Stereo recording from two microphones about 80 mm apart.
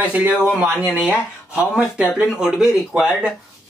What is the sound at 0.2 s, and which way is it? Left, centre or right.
Speech, right.